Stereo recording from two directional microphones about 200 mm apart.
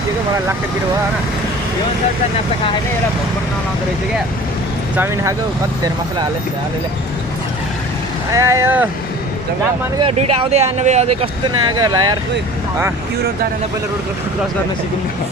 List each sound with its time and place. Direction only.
4.9 s speech: 10° right (ahead or behind)
8.3 s speech: 15° right (ahead or behind)
10.0 s speech: 30° right (ahead or behind)